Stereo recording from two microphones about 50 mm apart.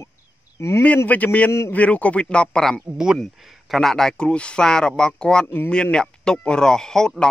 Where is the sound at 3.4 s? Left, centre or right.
Centre.